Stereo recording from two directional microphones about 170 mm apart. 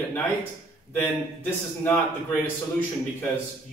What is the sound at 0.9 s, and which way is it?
A man's voice, 10° left (ahead or behind).